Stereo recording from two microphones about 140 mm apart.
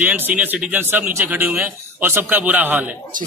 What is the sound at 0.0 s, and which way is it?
A man's voice, 10° right (ahead or behind).